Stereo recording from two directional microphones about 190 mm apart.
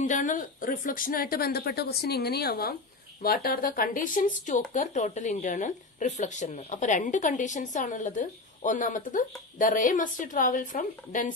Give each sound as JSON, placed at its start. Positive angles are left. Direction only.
{"t": 0.0, "sound": "speech", "side_deg": 40}